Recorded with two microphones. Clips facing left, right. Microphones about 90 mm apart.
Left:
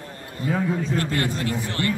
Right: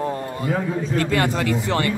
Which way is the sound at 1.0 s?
90° right.